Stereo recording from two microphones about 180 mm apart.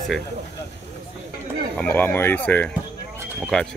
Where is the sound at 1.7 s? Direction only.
10° left (ahead or behind).